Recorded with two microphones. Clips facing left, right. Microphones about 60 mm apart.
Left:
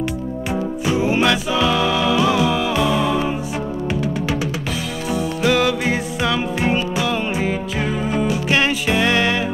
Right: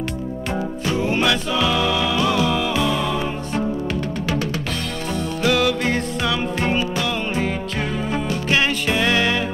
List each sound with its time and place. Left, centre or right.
0.8 s music: centre
5.5 s music: centre
6.6 s music: centre